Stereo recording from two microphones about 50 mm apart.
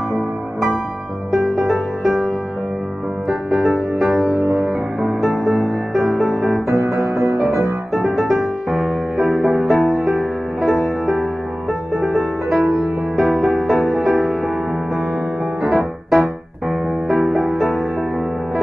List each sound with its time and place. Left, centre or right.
1.3 s music: centre
6.7 s music: right
8.2 s music: centre
12.0 s music: centre
15.6 s music: centre